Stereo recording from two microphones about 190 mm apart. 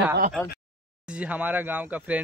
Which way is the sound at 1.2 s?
5° right (ahead or behind).